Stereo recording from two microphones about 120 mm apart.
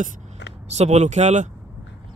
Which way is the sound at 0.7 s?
65° right (ahead or behind).